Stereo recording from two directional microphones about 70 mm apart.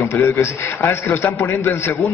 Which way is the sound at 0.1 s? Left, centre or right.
Left.